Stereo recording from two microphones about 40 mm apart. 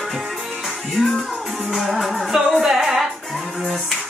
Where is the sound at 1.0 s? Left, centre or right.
Centre.